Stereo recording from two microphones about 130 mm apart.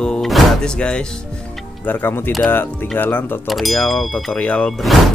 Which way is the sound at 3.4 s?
Centre (ahead or behind).